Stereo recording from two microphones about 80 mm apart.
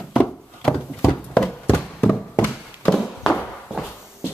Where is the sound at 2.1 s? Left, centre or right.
Left.